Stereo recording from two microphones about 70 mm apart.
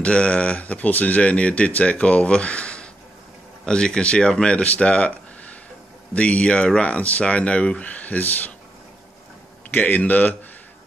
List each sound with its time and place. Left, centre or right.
0.0 s speech: centre
9.8 s a man's voice: left